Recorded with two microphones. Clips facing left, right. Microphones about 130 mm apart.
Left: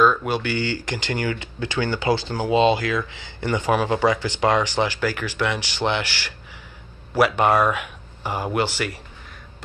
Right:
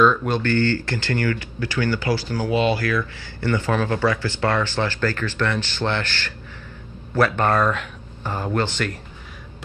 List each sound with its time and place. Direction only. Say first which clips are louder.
0.0 s speech: right 1 dB; 5° left (ahead or behind)